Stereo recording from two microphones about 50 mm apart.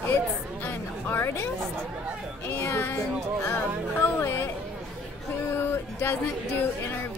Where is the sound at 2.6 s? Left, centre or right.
Left.